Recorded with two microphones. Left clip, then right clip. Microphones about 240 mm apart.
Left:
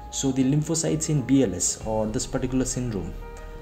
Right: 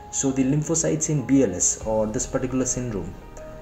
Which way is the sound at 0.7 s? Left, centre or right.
Left.